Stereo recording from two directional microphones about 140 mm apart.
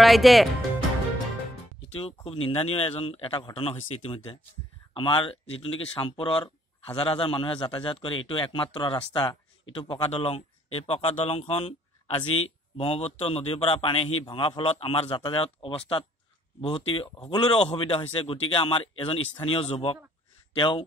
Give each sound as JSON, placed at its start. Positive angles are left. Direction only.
{"t": 0.0, "sound": "speech", "side_deg": 0}
{"t": 2.2, "sound": "speech", "side_deg": 40}